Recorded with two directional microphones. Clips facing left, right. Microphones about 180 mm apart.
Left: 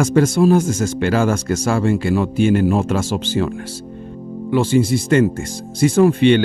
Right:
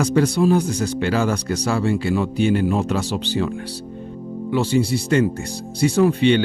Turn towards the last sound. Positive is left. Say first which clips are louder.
# left 3 dB
turn(degrees=50)  # may be behind; listen again after turning